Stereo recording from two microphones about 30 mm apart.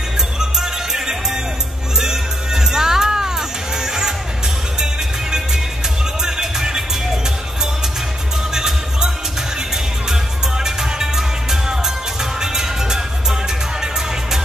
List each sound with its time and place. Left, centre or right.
0.4 s music: centre
6.2 s music: centre
8.5 s music: centre
10.6 s music: centre